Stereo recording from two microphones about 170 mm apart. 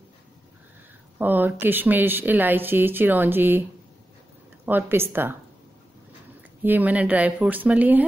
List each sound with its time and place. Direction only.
1.1 s a woman's voice: 10° right (ahead or behind)
4.6 s a woman's voice: 10° right (ahead or behind)
6.6 s a woman's voice: 10° right (ahead or behind)